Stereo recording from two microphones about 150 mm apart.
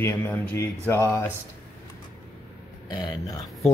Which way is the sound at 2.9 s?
30° left (ahead or behind).